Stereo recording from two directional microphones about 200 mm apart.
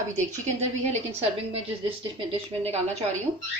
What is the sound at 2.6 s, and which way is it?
Speech, 30° right (ahead or behind).